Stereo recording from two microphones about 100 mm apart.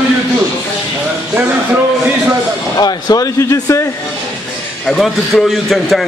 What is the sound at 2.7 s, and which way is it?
Speech, 40° left (ahead or behind).